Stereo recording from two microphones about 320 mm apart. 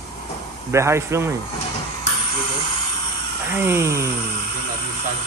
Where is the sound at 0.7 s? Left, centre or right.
Centre.